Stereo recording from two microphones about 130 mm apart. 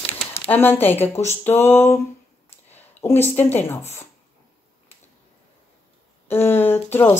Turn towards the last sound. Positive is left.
turn(degrees=15)  # may be behind; listen again after turning